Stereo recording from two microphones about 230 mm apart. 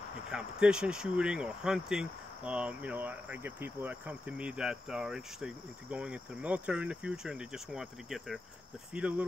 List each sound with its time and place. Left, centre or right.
0.3 s speech: centre